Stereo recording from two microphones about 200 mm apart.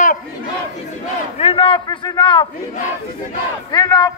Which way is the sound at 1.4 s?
30° left (ahead or behind).